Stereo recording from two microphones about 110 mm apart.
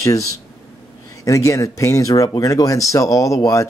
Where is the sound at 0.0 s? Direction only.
30° left (ahead or behind).